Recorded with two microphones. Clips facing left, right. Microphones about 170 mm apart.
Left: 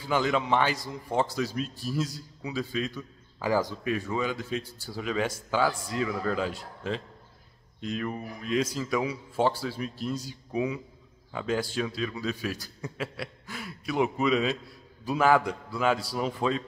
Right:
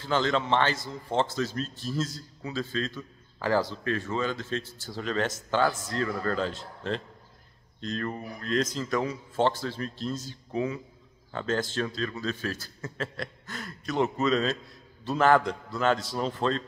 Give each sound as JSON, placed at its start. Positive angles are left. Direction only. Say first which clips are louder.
{"t": 0.0, "sound": "a man's voice", "louder": "even", "side_deg": 10}